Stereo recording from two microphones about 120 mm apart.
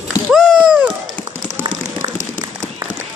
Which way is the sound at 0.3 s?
Centre (ahead or behind).